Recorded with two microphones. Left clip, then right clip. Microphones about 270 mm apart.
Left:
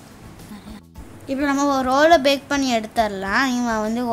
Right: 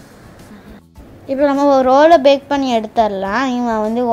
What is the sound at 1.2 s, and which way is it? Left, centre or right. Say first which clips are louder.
A woman's voice: right 7 dB; centre.